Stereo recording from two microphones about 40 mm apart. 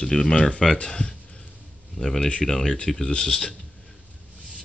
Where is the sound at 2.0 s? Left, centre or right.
Centre.